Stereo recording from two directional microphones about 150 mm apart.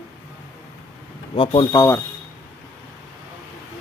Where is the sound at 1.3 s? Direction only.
35° left (ahead or behind).